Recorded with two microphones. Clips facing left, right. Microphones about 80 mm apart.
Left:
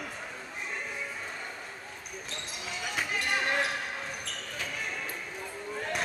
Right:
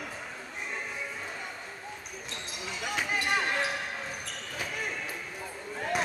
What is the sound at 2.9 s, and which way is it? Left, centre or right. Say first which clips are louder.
Basketball bounce: right 2 dB; centre.